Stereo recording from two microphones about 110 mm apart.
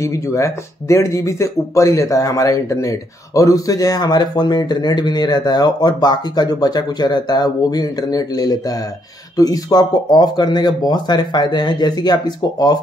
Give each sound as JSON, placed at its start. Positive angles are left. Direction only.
{"t": 0.0, "sound": "speech", "side_deg": 30}